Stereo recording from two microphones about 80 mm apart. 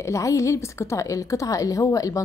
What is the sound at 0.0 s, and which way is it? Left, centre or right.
A woman's voice, left.